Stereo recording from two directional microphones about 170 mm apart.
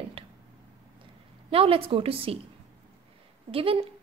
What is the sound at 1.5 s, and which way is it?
Speech, 35° right (ahead or behind).